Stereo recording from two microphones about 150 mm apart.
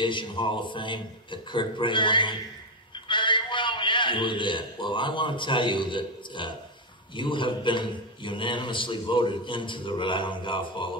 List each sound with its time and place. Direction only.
0.0 s a man's voice: 35° left (ahead or behind)